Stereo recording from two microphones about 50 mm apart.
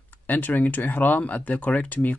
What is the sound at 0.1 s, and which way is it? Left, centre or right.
Speech, left.